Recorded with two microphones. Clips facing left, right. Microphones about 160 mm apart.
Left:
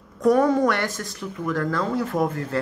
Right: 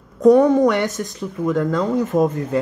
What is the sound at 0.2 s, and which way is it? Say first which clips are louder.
Speech: right 6 dB; 20° right (ahead or behind).